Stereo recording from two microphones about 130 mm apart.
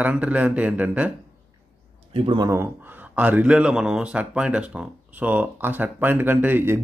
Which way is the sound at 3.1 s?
10° right (ahead or behind).